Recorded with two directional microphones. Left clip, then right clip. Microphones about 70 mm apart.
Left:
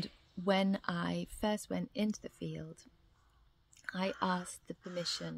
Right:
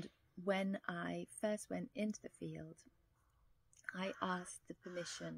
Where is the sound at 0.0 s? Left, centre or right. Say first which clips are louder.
Left 6 dB; left.